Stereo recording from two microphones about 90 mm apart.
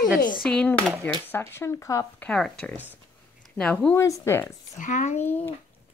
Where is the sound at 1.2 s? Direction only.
25° left (ahead or behind).